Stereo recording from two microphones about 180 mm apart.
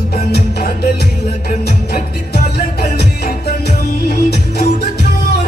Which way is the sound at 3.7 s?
60° left (ahead or behind).